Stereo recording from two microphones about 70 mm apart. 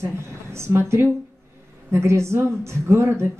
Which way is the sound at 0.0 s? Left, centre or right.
Right.